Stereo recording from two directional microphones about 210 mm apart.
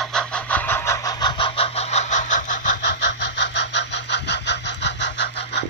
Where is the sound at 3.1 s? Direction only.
55° left (ahead or behind).